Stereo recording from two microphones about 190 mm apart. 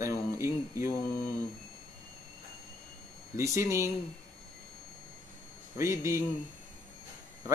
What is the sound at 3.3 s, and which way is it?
Speech, 15° right (ahead or behind).